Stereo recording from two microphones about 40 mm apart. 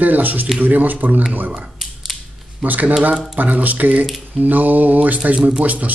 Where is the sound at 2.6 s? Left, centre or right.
Right.